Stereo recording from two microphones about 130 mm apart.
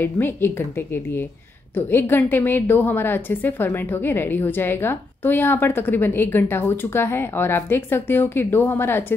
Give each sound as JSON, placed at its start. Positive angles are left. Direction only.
{"t": 0.0, "sound": "a woman's voice", "side_deg": 20}